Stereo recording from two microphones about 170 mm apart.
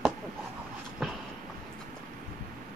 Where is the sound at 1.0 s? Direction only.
Centre (ahead or behind).